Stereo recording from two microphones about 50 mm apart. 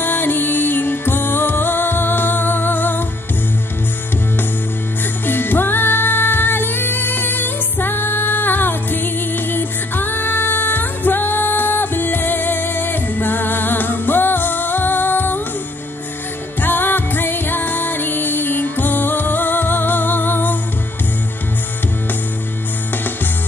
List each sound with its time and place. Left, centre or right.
0.0 s music: left
5.2 s music: left
16.6 s music: left